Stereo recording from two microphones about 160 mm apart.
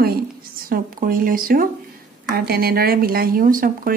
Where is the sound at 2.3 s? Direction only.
75° right (ahead or behind); by 3.9 s 60° right (ahead or behind).